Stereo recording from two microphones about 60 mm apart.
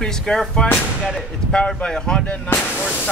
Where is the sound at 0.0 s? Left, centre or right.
Centre.